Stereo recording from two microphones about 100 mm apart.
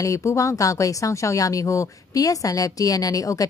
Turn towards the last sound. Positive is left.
turn(degrees=35)  # may be behind; listen again after turning